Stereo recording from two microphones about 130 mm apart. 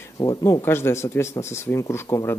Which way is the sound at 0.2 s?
25° left (ahead or behind).